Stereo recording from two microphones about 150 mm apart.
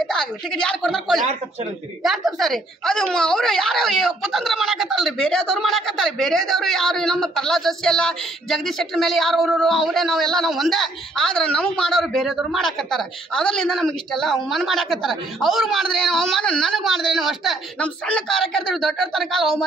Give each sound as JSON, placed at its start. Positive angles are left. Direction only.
{"t": 0.1, "sound": "speech", "side_deg": 5}